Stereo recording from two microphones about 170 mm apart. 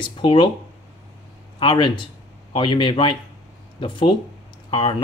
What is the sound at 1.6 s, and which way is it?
Speech, 25° left (ahead or behind).